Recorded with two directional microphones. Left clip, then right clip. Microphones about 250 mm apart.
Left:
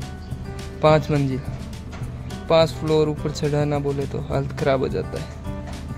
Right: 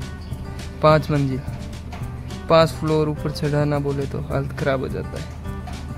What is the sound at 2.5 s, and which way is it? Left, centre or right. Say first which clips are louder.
Speech: right 1 dB; centre.